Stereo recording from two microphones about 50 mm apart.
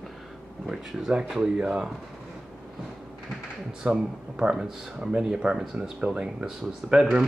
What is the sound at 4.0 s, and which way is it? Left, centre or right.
Speech, centre.